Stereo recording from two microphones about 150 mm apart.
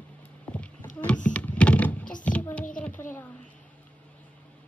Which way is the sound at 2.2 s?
10° left (ahead or behind).